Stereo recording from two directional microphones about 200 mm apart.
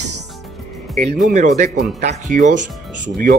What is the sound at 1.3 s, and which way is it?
Speech, 35° right (ahead or behind).